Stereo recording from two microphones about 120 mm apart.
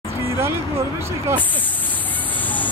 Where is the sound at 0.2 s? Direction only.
20° right (ahead or behind).